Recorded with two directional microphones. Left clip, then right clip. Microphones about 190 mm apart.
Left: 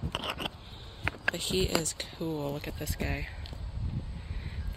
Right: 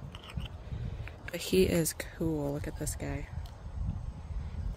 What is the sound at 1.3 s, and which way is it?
Speech, 60° right (ahead or behind).